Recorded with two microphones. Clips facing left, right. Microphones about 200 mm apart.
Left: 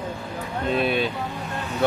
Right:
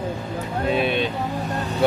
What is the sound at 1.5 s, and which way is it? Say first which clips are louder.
Vehicle: right 4 dB; 40° right (ahead or behind).